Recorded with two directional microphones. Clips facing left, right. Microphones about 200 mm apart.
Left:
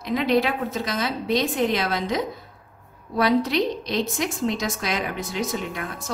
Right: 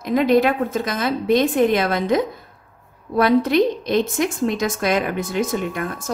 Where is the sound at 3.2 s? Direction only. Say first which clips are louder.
Right 5 dB; 50° right (ahead or behind).